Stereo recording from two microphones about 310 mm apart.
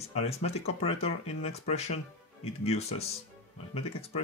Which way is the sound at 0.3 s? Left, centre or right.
Centre.